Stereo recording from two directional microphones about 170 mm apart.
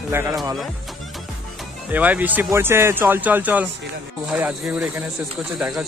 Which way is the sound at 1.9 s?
10° right (ahead or behind).